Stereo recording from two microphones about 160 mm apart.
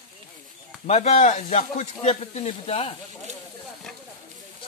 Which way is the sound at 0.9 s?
45° left (ahead or behind).